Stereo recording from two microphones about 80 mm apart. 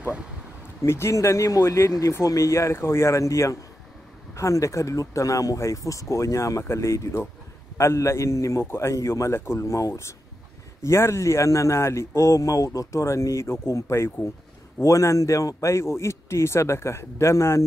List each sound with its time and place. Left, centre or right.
0.8 s speech: left